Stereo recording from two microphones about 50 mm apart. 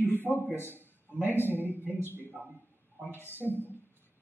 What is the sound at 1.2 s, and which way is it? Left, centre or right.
Speech, left.